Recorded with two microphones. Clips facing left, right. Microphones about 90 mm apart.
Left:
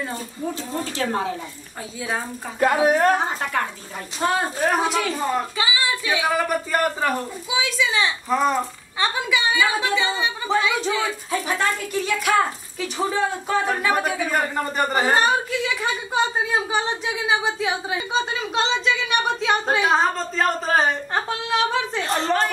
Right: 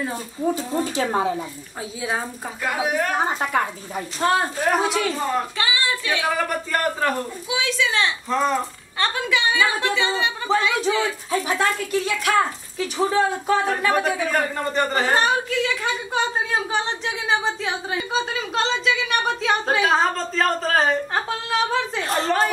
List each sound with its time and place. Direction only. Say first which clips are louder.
0.0 s a woman's voice: right 4 dB; 5° right (ahead or behind)
0.9 s speech: right 2 dB; 15° right (ahead or behind)
2.6 s a woman's voice: left 6 dB; 40° left (ahead or behind)
3.3 s a woman's voice: right 2 dB; 10° right (ahead or behind)